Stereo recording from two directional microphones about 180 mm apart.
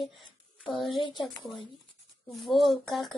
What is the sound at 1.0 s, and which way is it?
Speech, 25° left (ahead or behind).